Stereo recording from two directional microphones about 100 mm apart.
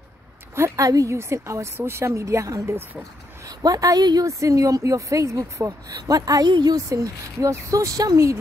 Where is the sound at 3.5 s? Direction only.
35° right (ahead or behind).